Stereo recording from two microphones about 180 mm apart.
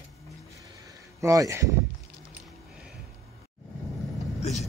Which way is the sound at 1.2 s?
15° right (ahead or behind).